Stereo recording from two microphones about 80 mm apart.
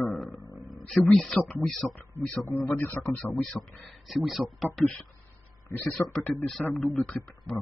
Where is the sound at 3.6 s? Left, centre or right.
Centre.